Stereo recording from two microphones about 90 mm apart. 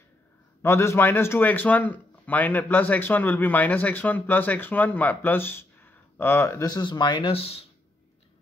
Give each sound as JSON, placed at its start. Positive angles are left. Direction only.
{"t": 0.6, "sound": "speech", "side_deg": 30}
{"t": 6.6, "sound": "speech", "side_deg": 50}